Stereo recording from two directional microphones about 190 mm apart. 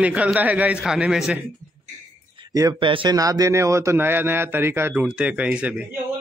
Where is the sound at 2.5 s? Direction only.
20° right (ahead or behind).